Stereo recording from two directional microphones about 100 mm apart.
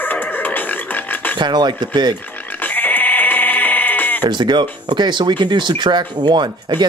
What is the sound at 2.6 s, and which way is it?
Sheep, 15° left (ahead or behind).